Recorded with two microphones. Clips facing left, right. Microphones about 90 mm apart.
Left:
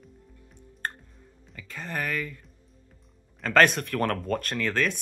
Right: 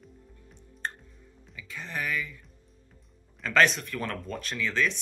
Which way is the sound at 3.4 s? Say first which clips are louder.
Left 3 dB; 50° left (ahead or behind).